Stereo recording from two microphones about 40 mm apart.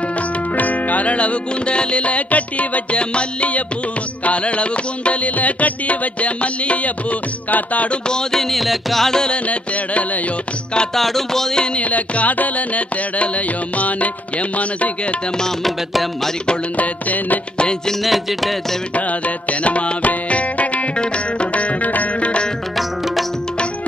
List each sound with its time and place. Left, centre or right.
0.6 s music: left
8.1 s music: centre
9.1 s music: centre
11.0 s music: centre
11.5 s music: left
11.8 s music: left
16.7 s music: left
18.0 s music: centre
18.9 s music: left